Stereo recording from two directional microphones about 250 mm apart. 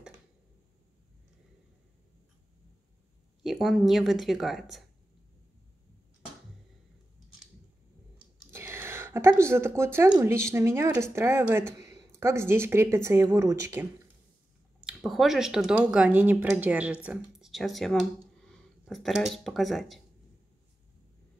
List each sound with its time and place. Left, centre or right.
3.4 s speech: centre
8.5 s speech: centre